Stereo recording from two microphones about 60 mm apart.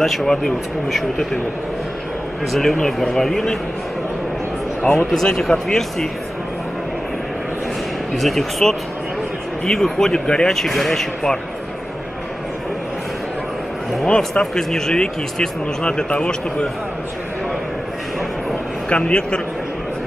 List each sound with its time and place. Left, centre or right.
0.0 s speech: centre
2.5 s speech: centre
4.9 s speech: centre
8.1 s speech: centre
14.0 s speech: centre
18.9 s a man's voice: centre